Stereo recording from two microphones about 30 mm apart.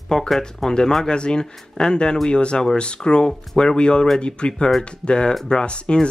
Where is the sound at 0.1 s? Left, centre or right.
Centre.